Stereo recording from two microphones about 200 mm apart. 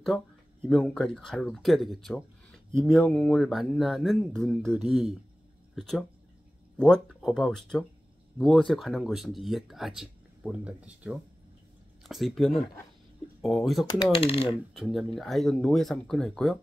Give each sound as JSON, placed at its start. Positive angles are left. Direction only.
{"t": 0.7, "sound": "speech", "side_deg": 5}
{"t": 14.1, "sound": "speech", "side_deg": 30}
{"t": 14.7, "sound": "speech", "side_deg": 0}